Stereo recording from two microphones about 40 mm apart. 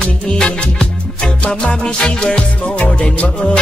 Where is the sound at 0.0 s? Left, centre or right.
Left.